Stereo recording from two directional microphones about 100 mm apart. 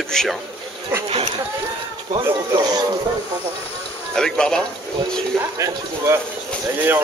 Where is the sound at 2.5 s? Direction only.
40° right (ahead or behind).